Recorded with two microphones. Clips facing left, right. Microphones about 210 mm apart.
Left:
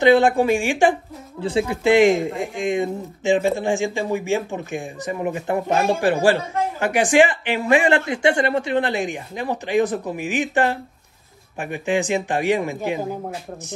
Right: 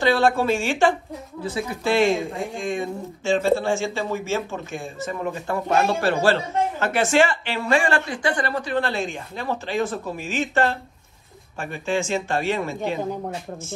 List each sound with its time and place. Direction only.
0.0 s speech: 20° left (ahead or behind)
1.4 s speech: 30° left (ahead or behind)